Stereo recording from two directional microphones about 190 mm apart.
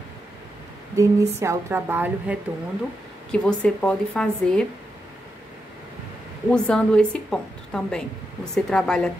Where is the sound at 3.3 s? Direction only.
5° left (ahead or behind).